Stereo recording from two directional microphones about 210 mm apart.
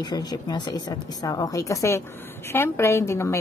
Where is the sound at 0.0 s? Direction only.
20° left (ahead or behind).